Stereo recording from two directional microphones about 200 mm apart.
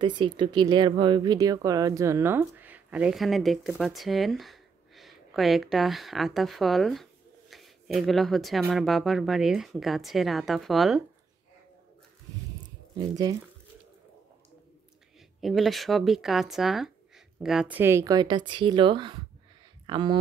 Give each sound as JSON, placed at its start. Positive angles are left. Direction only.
{"t": 0.0, "sound": "speech", "side_deg": -25}
{"t": 12.9, "sound": "speech", "side_deg": -15}
{"t": 15.4, "sound": "speech", "side_deg": 0}